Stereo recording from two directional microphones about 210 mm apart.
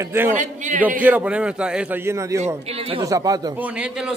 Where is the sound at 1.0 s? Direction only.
5° right (ahead or behind).